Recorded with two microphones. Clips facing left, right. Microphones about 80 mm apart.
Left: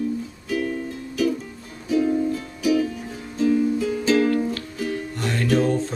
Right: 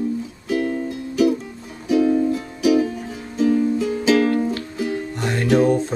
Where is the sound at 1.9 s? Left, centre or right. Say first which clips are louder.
Right 4 dB; right.